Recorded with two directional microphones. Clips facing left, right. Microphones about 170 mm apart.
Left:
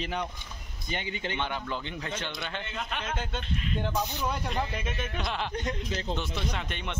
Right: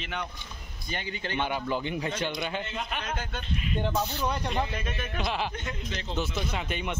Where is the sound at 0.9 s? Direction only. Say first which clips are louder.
Left 1 dB; 20° left (ahead or behind).